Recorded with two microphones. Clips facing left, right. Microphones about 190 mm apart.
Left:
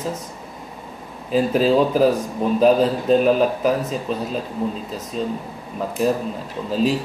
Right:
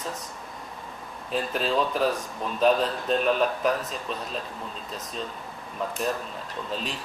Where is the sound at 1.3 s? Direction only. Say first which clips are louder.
Left 10 dB; centre (ahead or behind).